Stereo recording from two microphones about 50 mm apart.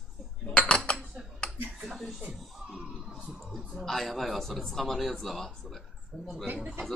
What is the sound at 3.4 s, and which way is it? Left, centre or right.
Speech, centre.